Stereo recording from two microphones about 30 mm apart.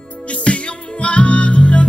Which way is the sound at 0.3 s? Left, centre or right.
Left.